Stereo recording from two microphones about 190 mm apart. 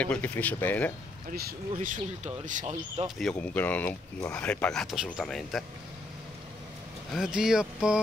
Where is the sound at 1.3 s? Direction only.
45° right (ahead or behind).